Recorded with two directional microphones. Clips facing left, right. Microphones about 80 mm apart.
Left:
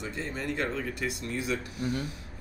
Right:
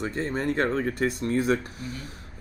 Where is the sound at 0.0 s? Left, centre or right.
Right.